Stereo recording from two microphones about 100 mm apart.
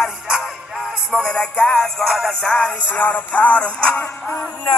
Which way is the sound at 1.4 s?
10° left (ahead or behind).